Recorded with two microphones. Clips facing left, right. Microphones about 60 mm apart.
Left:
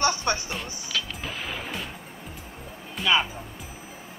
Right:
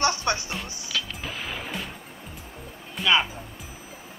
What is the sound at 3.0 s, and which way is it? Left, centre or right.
Speech, centre.